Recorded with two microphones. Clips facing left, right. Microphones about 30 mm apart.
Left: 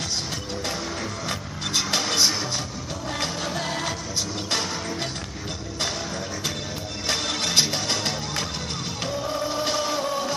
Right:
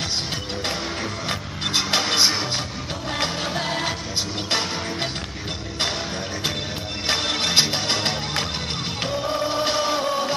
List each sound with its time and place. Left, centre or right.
1.3 s music: right
7.1 s music: right